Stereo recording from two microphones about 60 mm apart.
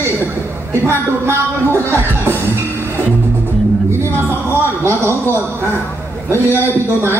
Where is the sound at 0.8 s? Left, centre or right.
Right.